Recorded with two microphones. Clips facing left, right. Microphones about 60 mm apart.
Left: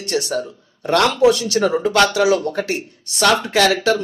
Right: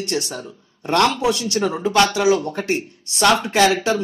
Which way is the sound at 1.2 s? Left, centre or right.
Right.